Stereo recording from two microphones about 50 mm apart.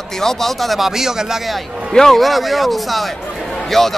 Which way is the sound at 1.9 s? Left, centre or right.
Centre.